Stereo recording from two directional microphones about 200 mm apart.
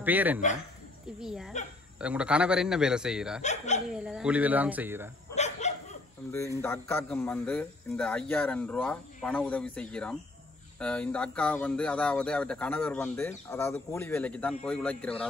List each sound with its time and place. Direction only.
0.0 s speech: 10° right (ahead or behind)
3.4 s speech: 35° left (ahead or behind)
3.9 s speech: 5° right (ahead or behind)
5.3 s dog: 35° left (ahead or behind)
6.6 s a man's voice: 10° left (ahead or behind)